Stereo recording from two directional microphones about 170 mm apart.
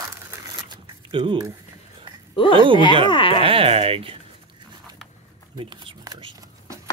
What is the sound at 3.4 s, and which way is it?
Speech, 35° right (ahead or behind).